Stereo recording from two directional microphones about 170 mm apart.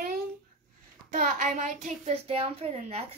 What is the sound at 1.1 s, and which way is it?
A child's voice, 45° right (ahead or behind).